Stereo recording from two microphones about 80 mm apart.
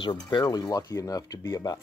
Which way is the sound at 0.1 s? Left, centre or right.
Left.